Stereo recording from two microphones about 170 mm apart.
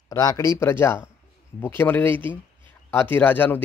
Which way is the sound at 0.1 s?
20° left (ahead or behind).